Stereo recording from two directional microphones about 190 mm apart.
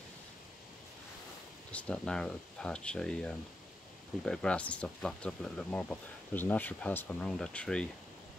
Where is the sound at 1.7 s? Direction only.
5° left (ahead or behind).